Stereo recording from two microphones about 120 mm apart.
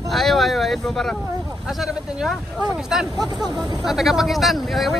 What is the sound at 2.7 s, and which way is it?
Speech, 5° right (ahead or behind).